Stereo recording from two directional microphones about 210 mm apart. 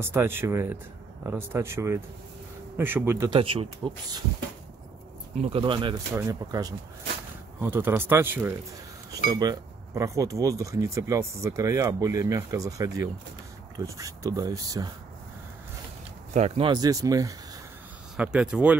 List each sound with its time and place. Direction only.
0.0 s speech: 10° right (ahead or behind)
3.3 s speech: 25° right (ahead or behind)
5.3 s speech: 30° right (ahead or behind)
16.3 s speech: 30° right (ahead or behind)
18.1 s speech: 5° right (ahead or behind)